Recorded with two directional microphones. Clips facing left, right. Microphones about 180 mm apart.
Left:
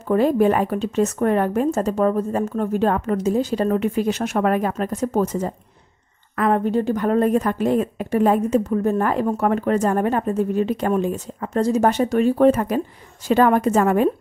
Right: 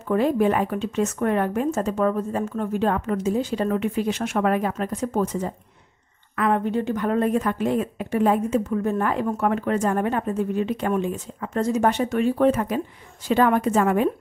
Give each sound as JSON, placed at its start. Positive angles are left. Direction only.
{"t": 0.1, "sound": "a woman's voice", "side_deg": 40}